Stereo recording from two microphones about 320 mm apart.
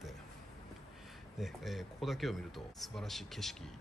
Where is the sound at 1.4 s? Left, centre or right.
Centre.